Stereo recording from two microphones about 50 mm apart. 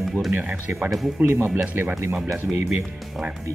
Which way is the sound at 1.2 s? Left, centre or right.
Right.